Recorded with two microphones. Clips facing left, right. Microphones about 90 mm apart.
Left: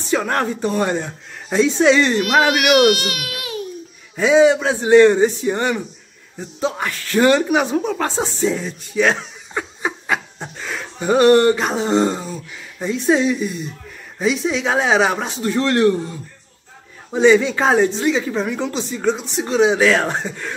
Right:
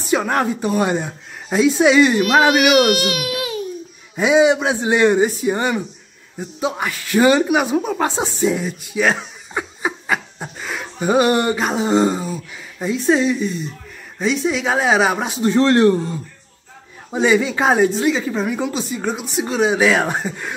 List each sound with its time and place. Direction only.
0.1 s speech: 10° right (ahead or behind)
2.6 s speech: 5° right (ahead or behind)
4.2 s speech: 15° right (ahead or behind)
15.4 s speech: 30° right (ahead or behind)
17.1 s speech: 5° right (ahead or behind)